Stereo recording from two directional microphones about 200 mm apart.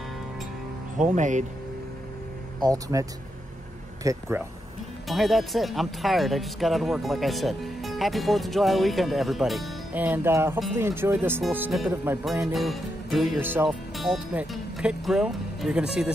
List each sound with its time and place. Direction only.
0.9 s speech: 40° right (ahead or behind)
2.6 s speech: 15° right (ahead or behind)
5.0 s speech: centre (ahead or behind)
12.5 s speech: centre (ahead or behind)